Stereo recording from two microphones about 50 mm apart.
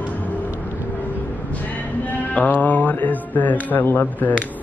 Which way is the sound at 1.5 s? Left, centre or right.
Left.